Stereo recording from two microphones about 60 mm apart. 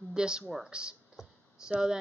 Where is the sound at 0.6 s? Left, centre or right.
Centre.